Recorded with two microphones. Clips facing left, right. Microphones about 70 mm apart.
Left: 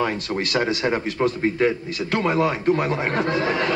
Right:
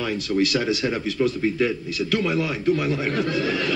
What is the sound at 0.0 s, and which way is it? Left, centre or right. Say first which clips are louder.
A man's voice: right 1 dB; left.